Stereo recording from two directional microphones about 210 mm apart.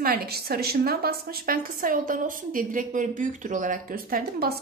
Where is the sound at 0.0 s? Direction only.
45° right (ahead or behind).